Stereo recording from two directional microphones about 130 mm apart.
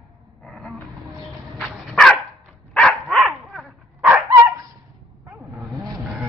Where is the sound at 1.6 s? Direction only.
Centre (ahead or behind).